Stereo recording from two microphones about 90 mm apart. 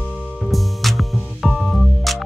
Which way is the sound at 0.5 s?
Centre (ahead or behind).